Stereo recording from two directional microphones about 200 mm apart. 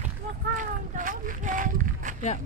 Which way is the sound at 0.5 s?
40° right (ahead or behind).